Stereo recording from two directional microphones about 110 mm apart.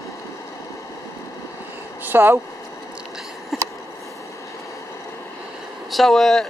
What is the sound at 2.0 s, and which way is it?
Speech, 20° right (ahead or behind).